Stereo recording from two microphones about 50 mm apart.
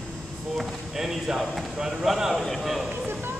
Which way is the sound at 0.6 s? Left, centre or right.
Centre.